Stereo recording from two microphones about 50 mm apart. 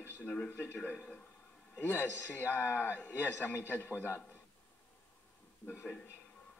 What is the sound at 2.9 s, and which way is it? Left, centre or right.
Speech, left.